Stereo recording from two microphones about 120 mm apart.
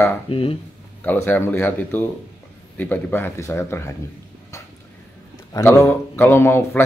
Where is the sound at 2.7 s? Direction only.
15° left (ahead or behind).